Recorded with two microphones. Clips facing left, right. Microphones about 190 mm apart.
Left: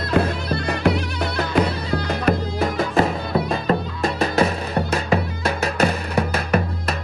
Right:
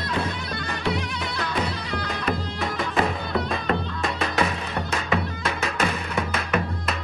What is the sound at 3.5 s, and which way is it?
Music, 35° left (ahead or behind).